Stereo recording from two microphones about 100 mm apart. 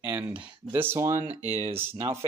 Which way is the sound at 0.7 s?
25° right (ahead or behind).